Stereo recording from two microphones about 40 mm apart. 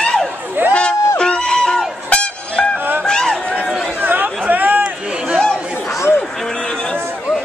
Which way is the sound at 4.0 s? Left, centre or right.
Right.